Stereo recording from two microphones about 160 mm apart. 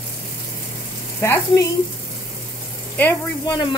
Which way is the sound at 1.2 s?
20° left (ahead or behind).